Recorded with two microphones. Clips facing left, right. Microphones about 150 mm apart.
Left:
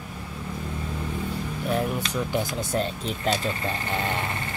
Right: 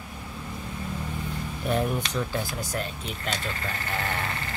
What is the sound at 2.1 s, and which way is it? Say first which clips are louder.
Speech: left 3 dB; 20° left (ahead or behind).